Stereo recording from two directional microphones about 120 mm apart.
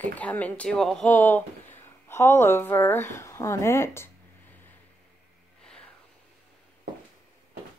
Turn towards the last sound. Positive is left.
turn(degrees=5)  # may be behind; listen again after turning